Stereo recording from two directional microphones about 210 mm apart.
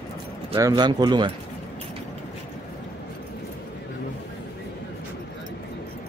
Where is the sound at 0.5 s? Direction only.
15° right (ahead or behind).